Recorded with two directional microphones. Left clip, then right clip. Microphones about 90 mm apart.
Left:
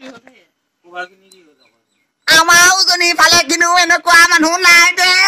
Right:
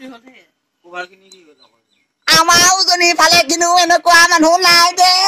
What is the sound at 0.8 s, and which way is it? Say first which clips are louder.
Speech: even; 25° right (ahead or behind).